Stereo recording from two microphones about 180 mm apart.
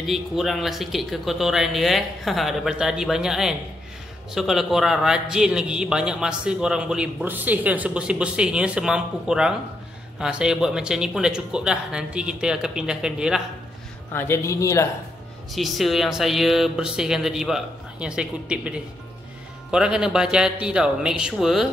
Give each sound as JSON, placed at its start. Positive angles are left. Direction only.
{"t": 0.0, "sound": "a man's voice", "side_deg": 0}
{"t": 14.1, "sound": "a man's voice", "side_deg": 10}
{"t": 15.5, "sound": "a man's voice", "side_deg": 0}